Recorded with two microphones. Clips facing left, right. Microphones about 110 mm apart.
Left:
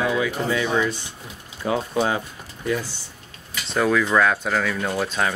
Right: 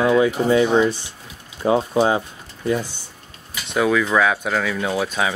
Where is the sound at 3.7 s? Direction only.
Centre (ahead or behind).